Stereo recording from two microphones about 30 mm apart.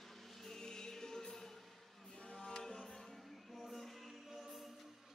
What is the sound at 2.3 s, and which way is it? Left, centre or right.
Music, left.